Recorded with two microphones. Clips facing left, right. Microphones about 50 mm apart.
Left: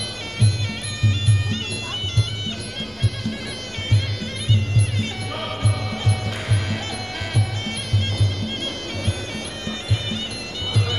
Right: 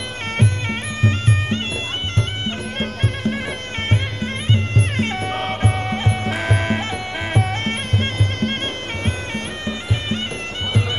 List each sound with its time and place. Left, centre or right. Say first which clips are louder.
0.4 s music: right 4 dB; right
9.7 s music: right 3 dB; right